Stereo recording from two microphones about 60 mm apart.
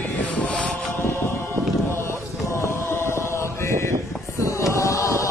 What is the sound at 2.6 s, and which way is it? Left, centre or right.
Chant, left.